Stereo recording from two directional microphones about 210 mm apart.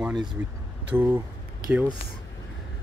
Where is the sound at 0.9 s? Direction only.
10° right (ahead or behind).